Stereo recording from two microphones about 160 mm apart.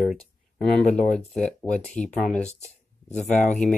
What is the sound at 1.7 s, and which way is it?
Speech, 10° left (ahead or behind).